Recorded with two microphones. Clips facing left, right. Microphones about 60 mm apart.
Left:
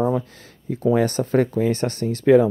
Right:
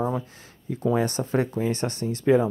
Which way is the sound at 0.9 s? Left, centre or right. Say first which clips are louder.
Left 6 dB; left.